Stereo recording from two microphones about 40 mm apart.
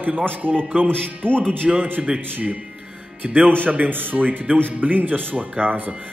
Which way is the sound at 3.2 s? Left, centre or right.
Right.